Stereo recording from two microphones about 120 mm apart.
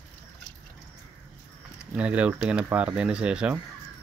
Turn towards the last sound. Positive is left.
turn(degrees=-10)  # may be behind; listen again after turning